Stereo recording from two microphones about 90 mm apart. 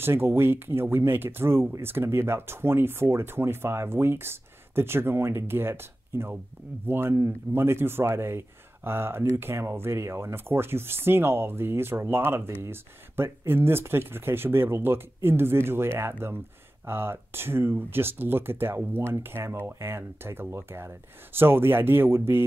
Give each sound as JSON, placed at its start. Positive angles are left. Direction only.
{"t": 0.0, "sound": "speech", "side_deg": -25}